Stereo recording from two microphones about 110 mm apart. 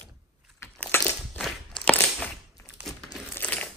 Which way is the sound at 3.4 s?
10° left (ahead or behind).